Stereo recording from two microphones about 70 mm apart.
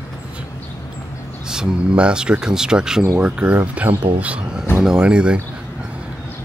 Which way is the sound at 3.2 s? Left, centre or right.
Right.